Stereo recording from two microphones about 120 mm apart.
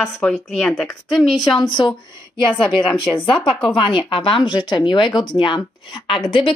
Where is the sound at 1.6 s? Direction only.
40° left (ahead or behind).